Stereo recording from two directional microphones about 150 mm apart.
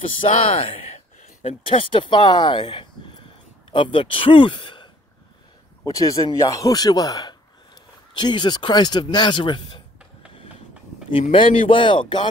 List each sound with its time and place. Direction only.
0.2 s speech: 40° left (ahead or behind)
5.9 s speech: 20° left (ahead or behind)
11.3 s speech: 35° left (ahead or behind)